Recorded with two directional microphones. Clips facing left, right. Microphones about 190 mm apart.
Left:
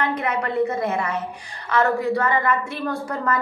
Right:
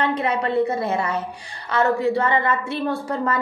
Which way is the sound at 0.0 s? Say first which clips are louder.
Right 2 dB; 30° right (ahead or behind).